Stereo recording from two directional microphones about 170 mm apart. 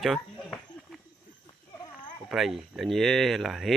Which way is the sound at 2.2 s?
Centre (ahead or behind).